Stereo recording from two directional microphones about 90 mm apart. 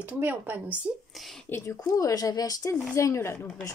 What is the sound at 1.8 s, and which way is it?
Speech, 40° left (ahead or behind).